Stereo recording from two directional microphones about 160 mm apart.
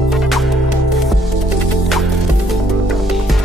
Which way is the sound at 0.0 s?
Centre (ahead or behind).